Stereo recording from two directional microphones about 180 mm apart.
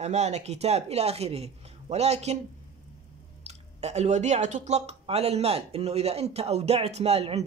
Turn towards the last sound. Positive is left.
turn(degrees=-35)  # may be behind; listen again after turning